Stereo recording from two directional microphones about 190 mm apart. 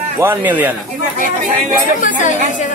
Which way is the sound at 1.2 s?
45° right (ahead or behind).